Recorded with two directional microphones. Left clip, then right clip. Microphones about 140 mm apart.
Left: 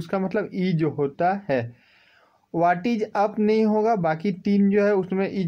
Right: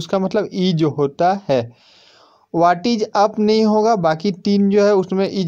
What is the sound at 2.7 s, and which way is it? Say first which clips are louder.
Speech: right 6 dB; 55° right (ahead or behind).